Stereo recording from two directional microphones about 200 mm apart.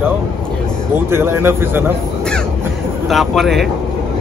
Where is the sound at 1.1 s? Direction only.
10° right (ahead or behind).